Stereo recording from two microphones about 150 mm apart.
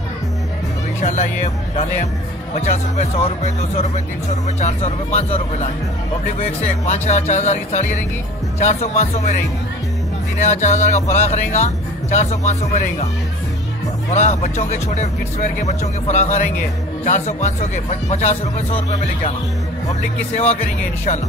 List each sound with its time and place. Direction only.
1.0 s speech: 50° left (ahead or behind)
10.4 s speech: 55° left (ahead or behind)
14.1 s speech: 50° left (ahead or behind)
20.3 s speech: 45° left (ahead or behind)